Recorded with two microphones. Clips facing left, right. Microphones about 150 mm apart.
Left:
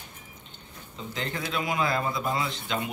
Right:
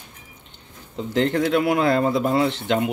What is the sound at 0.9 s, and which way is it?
Speech, 65° right (ahead or behind).